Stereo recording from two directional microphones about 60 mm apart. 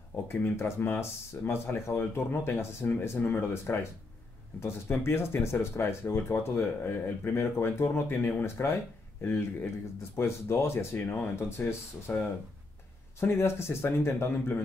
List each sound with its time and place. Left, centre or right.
0.3 s speech: left
2.9 s speech: left
4.6 s speech: left
13.2 s speech: left